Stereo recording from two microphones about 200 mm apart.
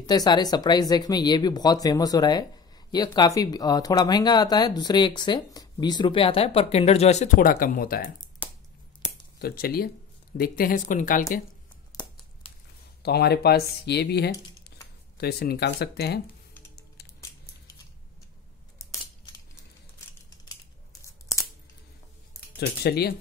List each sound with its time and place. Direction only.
0.0 s speech: 20° left (ahead or behind); by 8.1 s 45° left (ahead or behind)
9.4 s speech: 50° left (ahead or behind)
11.9 s crumpling: 20° left (ahead or behind)
12.4 s a sound: 25° left (ahead or behind)
13.0 s speech: 55° left (ahead or behind)
18.8 s scissors: 15° left (ahead or behind)
21.0 s tearing: 15° left (ahead or behind)
22.6 s speech: 50° left (ahead or behind)